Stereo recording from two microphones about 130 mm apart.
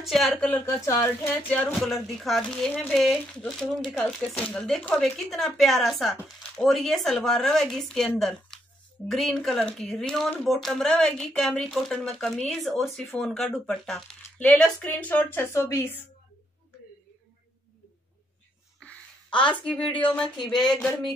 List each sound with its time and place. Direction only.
0.0 s speech: centre (ahead or behind)
0.3 s a woman's voice: 15° left (ahead or behind)
1.5 s speech: 5° left (ahead or behind); by 16.0 s 20° left (ahead or behind)
19.6 s speech: 10° left (ahead or behind)